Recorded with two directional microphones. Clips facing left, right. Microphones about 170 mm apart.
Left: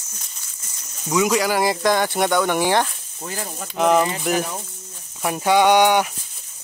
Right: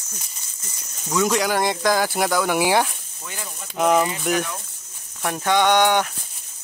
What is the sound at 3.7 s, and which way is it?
Speech, centre (ahead or behind).